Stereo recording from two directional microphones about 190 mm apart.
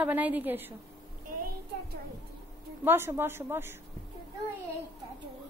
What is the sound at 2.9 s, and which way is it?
Speech, 10° right (ahead or behind).